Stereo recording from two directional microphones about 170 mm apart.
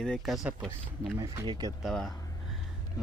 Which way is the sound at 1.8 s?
Centre (ahead or behind).